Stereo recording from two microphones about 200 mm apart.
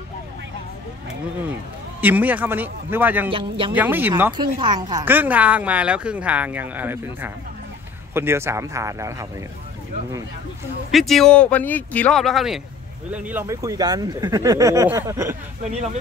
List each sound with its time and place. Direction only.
2.0 s a woman's voice: 10° right (ahead or behind)
3.3 s speech: 25° right (ahead or behind)
3.7 s a woman's voice: 10° right (ahead or behind)
4.3 s a woman's voice: 20° right (ahead or behind)
10.9 s a woman's voice: centre (ahead or behind)